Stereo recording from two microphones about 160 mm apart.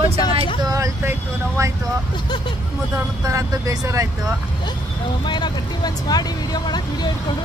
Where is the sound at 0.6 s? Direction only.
20° right (ahead or behind).